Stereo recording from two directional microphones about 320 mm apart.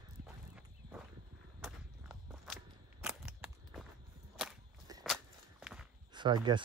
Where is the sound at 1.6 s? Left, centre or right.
Centre.